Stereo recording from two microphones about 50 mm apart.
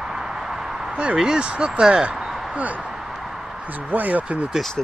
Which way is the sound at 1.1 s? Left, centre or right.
Centre.